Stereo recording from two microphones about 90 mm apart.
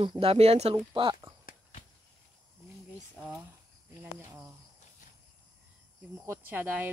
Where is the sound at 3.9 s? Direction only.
30° right (ahead or behind).